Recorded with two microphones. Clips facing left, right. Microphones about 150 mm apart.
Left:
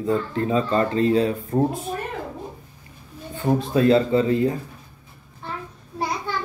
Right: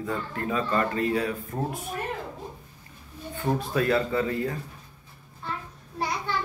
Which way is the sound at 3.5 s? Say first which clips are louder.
Left 7 dB; 25° left (ahead or behind).